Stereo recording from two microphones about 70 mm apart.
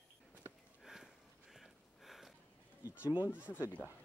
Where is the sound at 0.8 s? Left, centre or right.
Centre.